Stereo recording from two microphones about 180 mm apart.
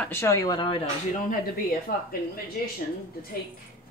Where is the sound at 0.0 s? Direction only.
15° left (ahead or behind).